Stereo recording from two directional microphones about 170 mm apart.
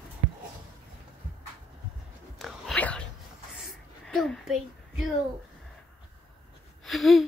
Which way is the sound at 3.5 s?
Centre (ahead or behind).